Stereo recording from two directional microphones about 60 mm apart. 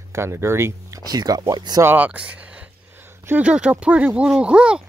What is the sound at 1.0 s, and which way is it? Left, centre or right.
Speech, right.